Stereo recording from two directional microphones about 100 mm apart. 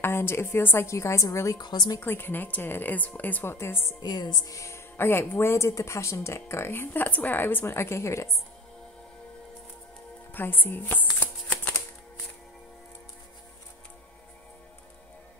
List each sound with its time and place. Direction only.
0.0 s a woman's voice: 25° left (ahead or behind)
1.6 s speech: 45° left (ahead or behind)
2.0 s a woman's voice: 20° left (ahead or behind)
4.0 s a woman's voice: 45° left (ahead or behind)
10.3 s a woman's voice: 20° left (ahead or behind)
11.1 s shuffling cards: 15° left (ahead or behind)